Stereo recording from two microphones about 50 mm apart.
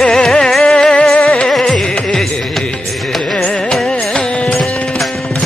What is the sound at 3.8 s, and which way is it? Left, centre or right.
Music, centre.